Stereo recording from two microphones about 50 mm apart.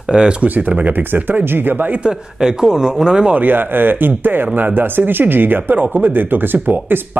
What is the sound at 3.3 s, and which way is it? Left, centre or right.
Speech, right.